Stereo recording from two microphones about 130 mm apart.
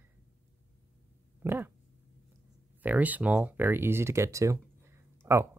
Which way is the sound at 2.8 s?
15° right (ahead or behind).